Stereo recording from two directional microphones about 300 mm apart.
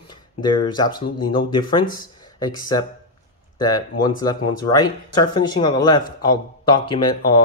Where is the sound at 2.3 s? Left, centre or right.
Centre.